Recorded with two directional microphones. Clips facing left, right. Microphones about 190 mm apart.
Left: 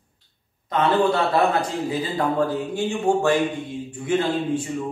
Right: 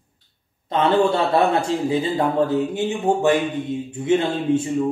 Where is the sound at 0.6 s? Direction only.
25° right (ahead or behind).